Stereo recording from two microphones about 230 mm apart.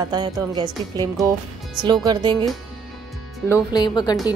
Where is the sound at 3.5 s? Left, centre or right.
Centre.